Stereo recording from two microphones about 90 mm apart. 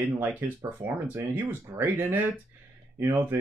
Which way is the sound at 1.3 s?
20° right (ahead or behind).